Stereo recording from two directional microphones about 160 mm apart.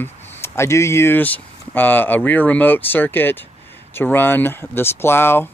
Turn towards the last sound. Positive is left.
turn(degrees=15)  # may be behind; listen again after turning